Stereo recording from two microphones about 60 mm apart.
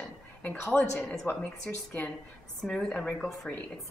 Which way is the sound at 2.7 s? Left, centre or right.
Centre.